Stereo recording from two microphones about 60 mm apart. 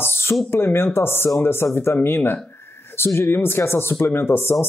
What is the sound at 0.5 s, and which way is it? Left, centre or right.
Speech, left.